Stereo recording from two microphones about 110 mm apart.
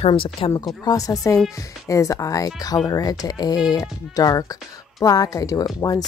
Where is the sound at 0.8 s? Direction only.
35° left (ahead or behind).